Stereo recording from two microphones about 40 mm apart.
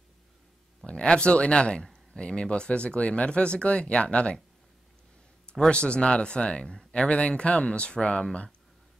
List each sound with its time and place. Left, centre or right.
0.8 s speech: left
5.7 s speech: left